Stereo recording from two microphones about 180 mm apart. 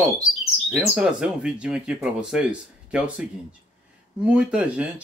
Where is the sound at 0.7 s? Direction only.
5° right (ahead or behind).